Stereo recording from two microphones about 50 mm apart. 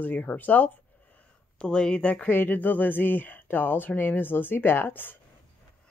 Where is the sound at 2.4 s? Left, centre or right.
Left.